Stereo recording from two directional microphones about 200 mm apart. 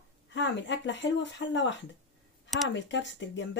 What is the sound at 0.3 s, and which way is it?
Speech, 65° left (ahead or behind).